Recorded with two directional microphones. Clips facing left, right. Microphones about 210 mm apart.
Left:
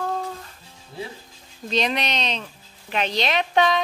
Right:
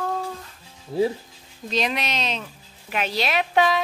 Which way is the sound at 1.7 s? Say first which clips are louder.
Left 1 dB; 5° right (ahead or behind).